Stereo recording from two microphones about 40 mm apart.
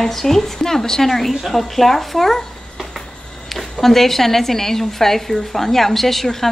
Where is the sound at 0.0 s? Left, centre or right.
Centre.